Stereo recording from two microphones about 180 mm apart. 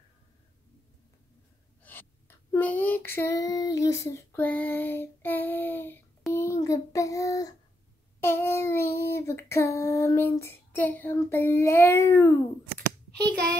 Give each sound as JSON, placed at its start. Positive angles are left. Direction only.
{"t": 1.8, "sound": "female singing", "side_deg": 10}
{"t": 6.3, "sound": "child singing", "side_deg": 15}
{"t": 8.2, "sound": "a sound", "side_deg": 15}